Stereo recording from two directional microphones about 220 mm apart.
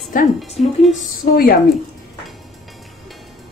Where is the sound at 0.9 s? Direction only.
45° left (ahead or behind).